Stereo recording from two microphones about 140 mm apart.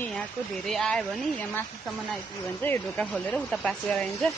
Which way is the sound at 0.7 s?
5° left (ahead or behind).